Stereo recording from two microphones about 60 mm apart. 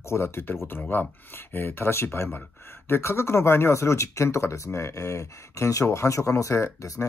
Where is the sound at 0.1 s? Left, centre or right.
Left.